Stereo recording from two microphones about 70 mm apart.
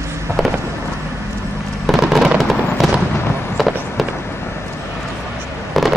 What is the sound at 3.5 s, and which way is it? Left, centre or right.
Run, centre.